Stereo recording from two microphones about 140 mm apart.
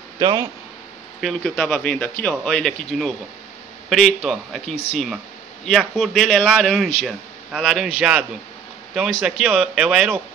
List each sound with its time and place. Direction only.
0.2 s speech: 30° right (ahead or behind)
1.2 s a man's voice: centre (ahead or behind)